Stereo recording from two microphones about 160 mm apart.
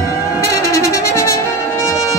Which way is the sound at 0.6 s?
20° left (ahead or behind).